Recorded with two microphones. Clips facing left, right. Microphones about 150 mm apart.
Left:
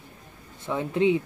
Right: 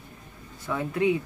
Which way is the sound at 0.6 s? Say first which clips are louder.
Left 2 dB; 25° left (ahead or behind).